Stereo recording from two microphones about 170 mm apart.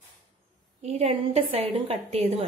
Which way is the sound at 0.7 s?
35° right (ahead or behind).